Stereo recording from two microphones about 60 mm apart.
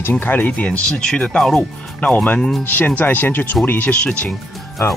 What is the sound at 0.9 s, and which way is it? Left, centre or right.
Speech, centre.